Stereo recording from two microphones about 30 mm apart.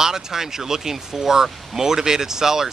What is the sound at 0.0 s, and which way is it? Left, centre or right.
Speech, centre.